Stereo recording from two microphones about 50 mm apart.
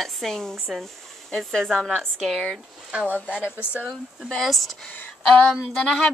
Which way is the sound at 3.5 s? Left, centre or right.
Right.